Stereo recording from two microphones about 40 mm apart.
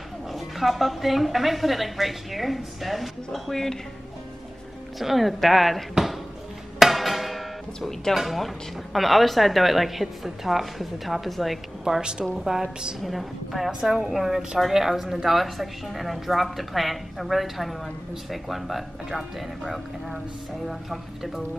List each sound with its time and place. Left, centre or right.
0.3 s a woman's voice: centre
4.9 s a woman's voice: centre
6.8 s music: centre
8.2 s a woman's voice: centre
12.0 s a woman's voice: right
12.4 s a woman's voice: centre